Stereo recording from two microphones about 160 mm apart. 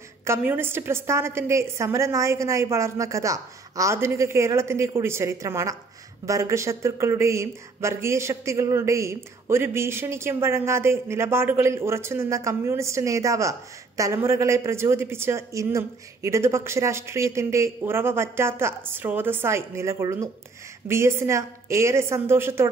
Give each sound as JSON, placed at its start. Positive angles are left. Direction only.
{"t": 0.2, "sound": "speech", "side_deg": -15}